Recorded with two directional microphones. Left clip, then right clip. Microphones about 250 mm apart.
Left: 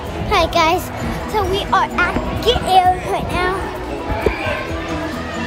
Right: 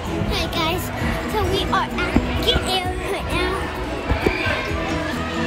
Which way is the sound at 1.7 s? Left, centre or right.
Centre.